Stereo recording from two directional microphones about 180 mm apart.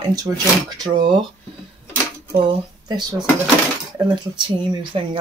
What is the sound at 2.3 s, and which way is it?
Speech, 25° right (ahead or behind).